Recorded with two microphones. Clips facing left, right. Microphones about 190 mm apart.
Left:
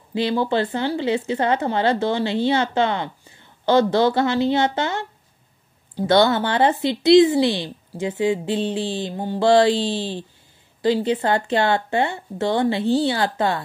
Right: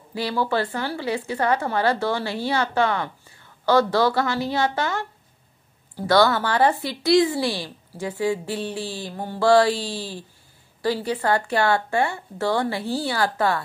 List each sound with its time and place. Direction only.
0.1 s speech: 20° left (ahead or behind)